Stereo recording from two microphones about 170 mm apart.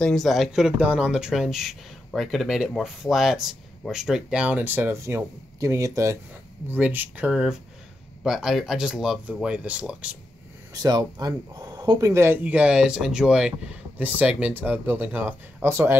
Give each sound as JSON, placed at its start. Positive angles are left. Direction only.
{"t": 0.0, "sound": "speech", "side_deg": 0}
{"t": 10.7, "sound": "speech", "side_deg": -20}